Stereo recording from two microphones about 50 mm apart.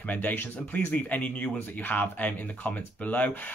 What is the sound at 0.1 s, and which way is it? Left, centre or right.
Speech, left.